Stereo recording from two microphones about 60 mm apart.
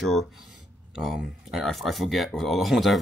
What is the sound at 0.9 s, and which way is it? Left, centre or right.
Speech, centre.